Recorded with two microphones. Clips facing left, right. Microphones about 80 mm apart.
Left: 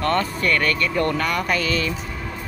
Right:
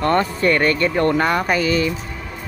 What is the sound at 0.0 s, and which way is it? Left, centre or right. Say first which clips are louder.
Speech: right 4 dB; right.